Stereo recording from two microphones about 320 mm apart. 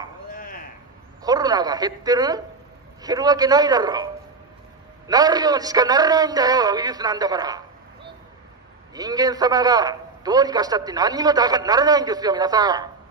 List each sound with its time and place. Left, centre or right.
0.3 s chop: left
1.2 s a man's voice: centre
8.9 s a man's voice: centre